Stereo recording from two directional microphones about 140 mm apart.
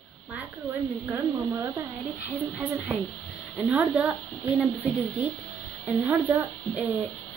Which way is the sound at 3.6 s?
10° right (ahead or behind).